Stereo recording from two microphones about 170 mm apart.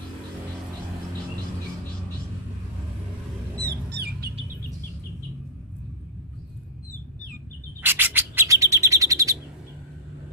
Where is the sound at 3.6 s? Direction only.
65° right (ahead or behind).